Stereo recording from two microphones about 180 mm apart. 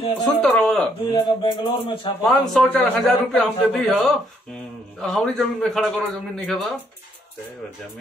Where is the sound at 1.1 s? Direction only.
25° left (ahead or behind).